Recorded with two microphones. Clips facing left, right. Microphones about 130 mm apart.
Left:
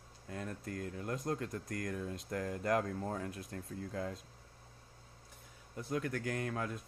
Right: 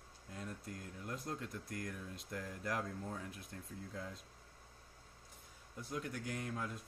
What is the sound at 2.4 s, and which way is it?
Speech, 75° left (ahead or behind).